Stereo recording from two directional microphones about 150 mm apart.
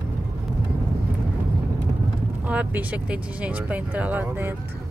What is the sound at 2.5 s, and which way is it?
Speech, 10° right (ahead or behind).